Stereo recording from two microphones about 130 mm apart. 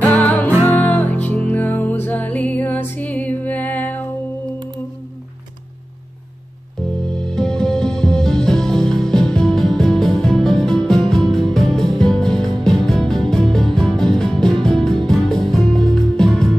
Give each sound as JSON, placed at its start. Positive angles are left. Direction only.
{"t": 0.0, "sound": "music", "side_deg": 10}
{"t": 7.1, "sound": "music", "side_deg": 5}